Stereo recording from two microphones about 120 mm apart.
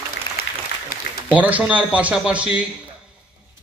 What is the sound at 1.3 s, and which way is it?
Speech, 10° right (ahead or behind).